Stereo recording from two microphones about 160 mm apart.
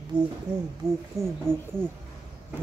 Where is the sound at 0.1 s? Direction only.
5° right (ahead or behind).